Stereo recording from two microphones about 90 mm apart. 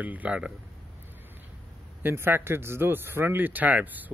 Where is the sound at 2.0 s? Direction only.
25° right (ahead or behind).